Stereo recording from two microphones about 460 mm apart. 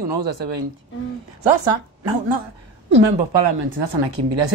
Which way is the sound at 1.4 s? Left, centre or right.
Right.